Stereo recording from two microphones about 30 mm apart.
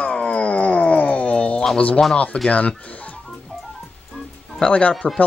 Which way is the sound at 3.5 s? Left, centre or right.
Left.